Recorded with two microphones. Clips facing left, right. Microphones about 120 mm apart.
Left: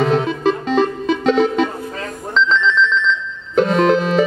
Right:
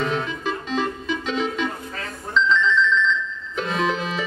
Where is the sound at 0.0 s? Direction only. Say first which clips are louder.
Left 9 dB; 80° left.